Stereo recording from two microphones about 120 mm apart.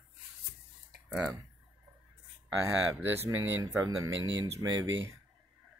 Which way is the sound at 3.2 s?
30° right (ahead or behind).